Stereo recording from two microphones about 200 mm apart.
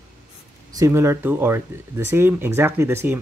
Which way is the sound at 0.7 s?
15° right (ahead or behind).